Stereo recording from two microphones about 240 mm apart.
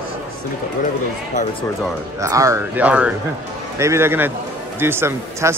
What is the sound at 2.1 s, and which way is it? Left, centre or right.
Speech, centre.